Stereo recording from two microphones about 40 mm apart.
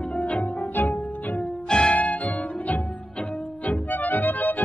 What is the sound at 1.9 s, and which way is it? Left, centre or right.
Music, left.